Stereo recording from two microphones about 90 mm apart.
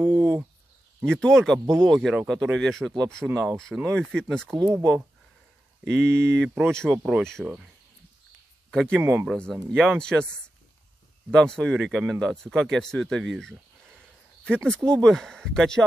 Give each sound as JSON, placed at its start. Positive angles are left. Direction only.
{"t": 0.0, "sound": "a sound", "side_deg": -25}
{"t": 1.0, "sound": "speech", "side_deg": 10}
{"t": 5.9, "sound": "speech", "side_deg": 5}
{"t": 7.4, "sound": "speech", "side_deg": -5}
{"t": 8.6, "sound": "a sound", "side_deg": 5}
{"t": 8.9, "sound": "speech", "side_deg": -20}
{"t": 9.3, "sound": "speech", "side_deg": 5}
{"t": 11.2, "sound": "speech", "side_deg": 10}